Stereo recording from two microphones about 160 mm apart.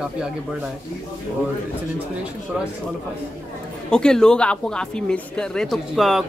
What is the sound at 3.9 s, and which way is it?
Speech, 5° left (ahead or behind).